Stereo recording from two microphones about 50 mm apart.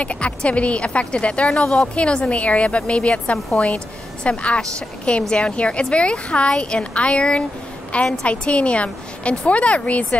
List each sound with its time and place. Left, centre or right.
0.0 s speech: left